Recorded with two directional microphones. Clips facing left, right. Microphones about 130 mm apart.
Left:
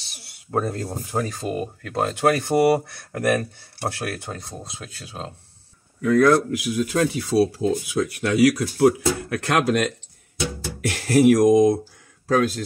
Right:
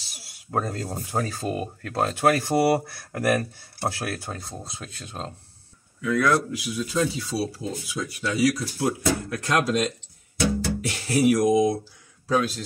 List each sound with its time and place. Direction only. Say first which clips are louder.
0.5 s speech: left 3 dB; centre (ahead or behind)
5.9 s speech: left 6 dB; 45° left (ahead or behind)